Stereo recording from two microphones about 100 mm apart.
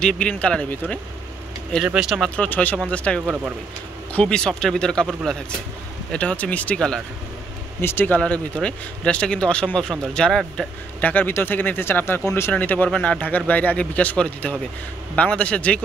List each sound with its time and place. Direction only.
0.0 s speech: 10° left (ahead or behind)
1.9 s speech: 5° right (ahead or behind)
2.2 s a man's voice: 15° left (ahead or behind)
6.1 s speech: 15° left (ahead or behind)
7.8 s speech: 20° left (ahead or behind)